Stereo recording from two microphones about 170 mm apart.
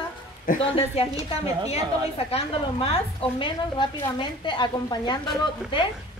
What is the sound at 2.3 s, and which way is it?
A woman's voice, 35° left (ahead or behind).